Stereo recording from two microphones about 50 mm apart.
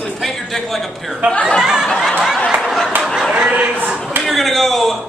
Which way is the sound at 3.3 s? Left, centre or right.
Right.